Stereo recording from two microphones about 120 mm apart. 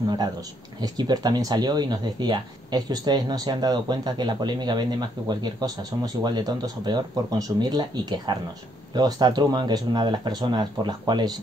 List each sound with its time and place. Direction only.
0.7 s speech: 35° right (ahead or behind)